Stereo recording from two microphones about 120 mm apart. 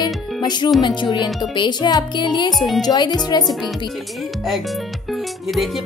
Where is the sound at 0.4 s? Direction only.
35° left (ahead or behind).